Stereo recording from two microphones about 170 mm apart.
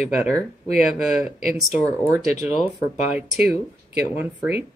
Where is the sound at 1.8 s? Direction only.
20° right (ahead or behind).